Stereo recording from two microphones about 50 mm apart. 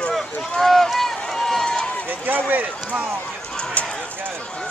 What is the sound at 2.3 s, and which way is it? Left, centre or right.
Run, right.